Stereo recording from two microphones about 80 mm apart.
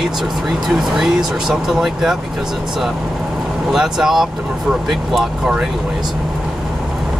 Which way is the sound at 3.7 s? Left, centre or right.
Centre.